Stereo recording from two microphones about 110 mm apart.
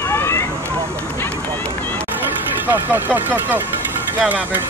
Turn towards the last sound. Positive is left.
turn(degrees=-15)  # may be behind; listen again after turning